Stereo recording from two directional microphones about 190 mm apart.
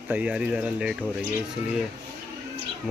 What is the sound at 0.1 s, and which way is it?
Speech, 5° right (ahead or behind).